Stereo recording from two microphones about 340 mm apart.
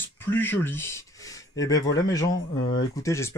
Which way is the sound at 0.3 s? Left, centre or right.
Centre.